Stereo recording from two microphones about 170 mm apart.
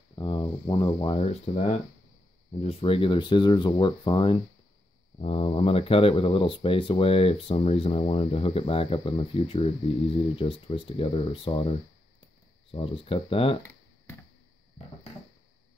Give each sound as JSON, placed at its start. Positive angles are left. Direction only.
{"t": 0.1, "sound": "speech", "side_deg": 25}